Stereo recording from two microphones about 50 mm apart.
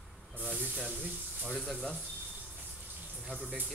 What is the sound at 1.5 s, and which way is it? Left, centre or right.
Speech, centre.